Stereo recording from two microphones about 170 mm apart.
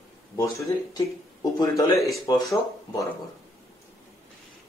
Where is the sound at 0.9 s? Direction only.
20° left (ahead or behind).